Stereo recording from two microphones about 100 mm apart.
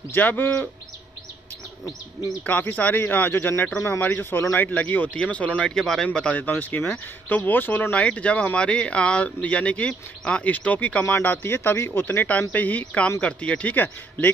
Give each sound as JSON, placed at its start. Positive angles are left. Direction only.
{"t": 0.1, "sound": "a man's voice", "side_deg": 20}
{"t": 2.4, "sound": "a man's voice", "side_deg": 20}
{"t": 11.1, "sound": "a man's voice", "side_deg": 25}